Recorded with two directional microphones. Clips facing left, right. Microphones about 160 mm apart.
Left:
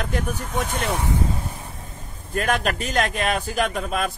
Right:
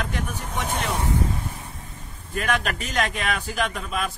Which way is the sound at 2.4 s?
40° left (ahead or behind).